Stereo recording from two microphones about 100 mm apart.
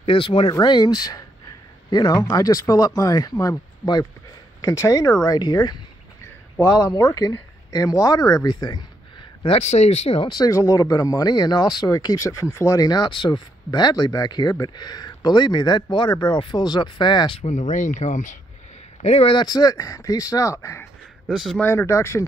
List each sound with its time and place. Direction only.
0.0 s speech: 60° left (ahead or behind)
0.5 s a man's voice: 40° left (ahead or behind)
2.1 s speech: 35° left (ahead or behind)
9.5 s speech: 90° left
10.2 s speech: 40° left (ahead or behind)
18.0 s speech: 90° left
19.3 s speech: 40° left (ahead or behind)